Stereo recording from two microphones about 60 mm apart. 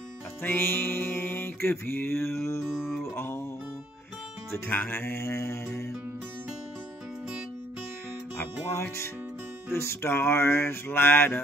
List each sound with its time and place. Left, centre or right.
0.4 s music: left
4.5 s music: left
8.4 s music: left